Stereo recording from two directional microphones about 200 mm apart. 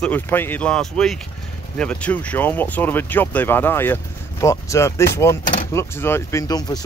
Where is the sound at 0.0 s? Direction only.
10° left (ahead or behind).